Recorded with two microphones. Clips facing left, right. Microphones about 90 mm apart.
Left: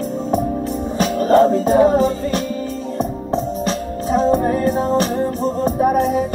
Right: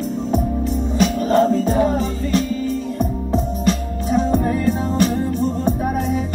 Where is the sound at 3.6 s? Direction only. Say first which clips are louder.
Even; 35° left (ahead or behind).